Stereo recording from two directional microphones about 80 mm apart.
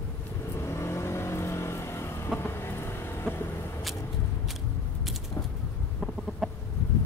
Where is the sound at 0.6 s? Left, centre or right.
Left.